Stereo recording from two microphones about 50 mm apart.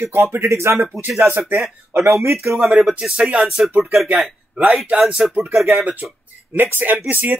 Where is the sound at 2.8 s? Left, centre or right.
Right.